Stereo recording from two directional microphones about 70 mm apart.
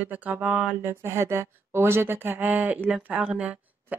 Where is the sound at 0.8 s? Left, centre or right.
Right.